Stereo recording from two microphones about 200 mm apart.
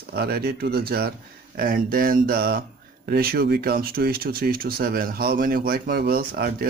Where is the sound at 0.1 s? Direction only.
50° right (ahead or behind).